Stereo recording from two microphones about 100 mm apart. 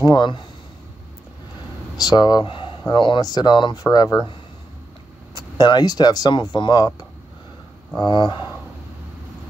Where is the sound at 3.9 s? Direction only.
40° left (ahead or behind).